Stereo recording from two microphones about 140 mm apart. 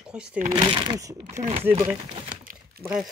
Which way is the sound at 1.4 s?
45° right (ahead or behind).